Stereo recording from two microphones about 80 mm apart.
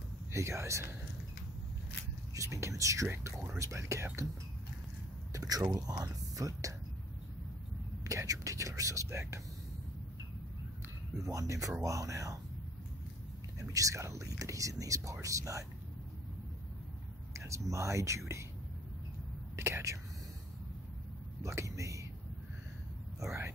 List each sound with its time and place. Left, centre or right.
0.3 s speech: right
2.3 s speech: right
5.3 s speech: right
8.0 s speech: right
11.2 s speech: right
13.6 s speech: right
17.3 s speech: right
19.5 s speech: right
21.4 s speech: right
23.2 s speech: right